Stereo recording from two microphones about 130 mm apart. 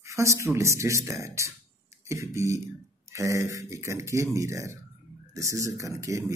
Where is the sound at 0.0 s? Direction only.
25° right (ahead or behind).